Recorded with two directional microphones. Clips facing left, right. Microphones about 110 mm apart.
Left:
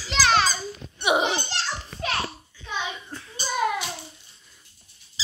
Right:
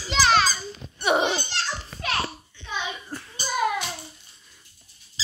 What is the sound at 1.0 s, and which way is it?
Laughter, 10° left (ahead or behind).